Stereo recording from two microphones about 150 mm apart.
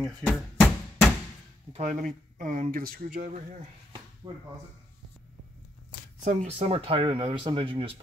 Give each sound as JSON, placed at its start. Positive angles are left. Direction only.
{"t": 0.2, "sound": "a sound", "side_deg": 5}
{"t": 1.7, "sound": "speech", "side_deg": -55}
{"t": 6.2, "sound": "speech", "side_deg": -45}